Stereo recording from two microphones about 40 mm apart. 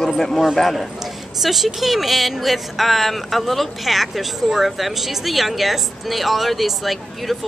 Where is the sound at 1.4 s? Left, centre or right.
Centre.